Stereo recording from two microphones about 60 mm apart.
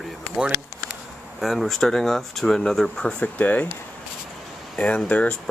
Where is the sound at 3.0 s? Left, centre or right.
Left.